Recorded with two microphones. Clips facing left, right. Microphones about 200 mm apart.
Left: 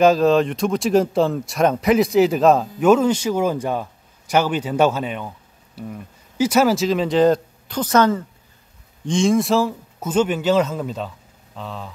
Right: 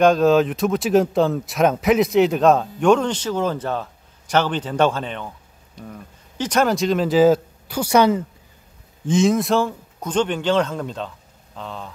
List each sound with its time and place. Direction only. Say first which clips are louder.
0.0 s speech: even; centre (ahead or behind)